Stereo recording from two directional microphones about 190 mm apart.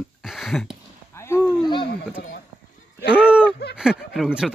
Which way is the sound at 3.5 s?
60° left (ahead or behind).